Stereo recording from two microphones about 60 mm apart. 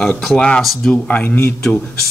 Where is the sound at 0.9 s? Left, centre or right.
Left.